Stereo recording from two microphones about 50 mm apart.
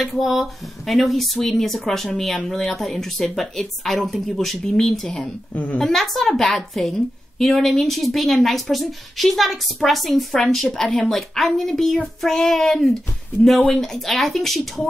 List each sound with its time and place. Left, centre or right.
0.0 s a woman's voice: centre
5.5 s a woman's voice: left
5.8 s a woman's voice: centre